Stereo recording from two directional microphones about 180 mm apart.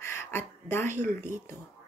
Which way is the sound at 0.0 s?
15° left (ahead or behind).